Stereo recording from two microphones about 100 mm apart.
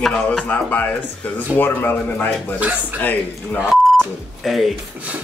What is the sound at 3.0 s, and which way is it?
Speech, 15° left (ahead or behind).